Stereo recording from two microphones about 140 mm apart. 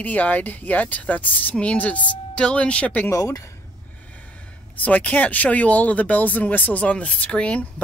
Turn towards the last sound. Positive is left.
turn(degrees=10)  # may be behind; listen again after turning